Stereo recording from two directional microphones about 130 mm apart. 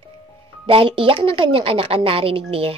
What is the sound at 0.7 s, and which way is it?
A woman's voice, 45° right (ahead or behind).